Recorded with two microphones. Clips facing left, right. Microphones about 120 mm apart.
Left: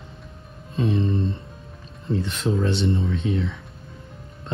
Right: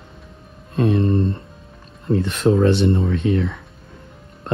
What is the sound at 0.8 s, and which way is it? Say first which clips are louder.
Speech: right 5 dB; 60° right (ahead or behind).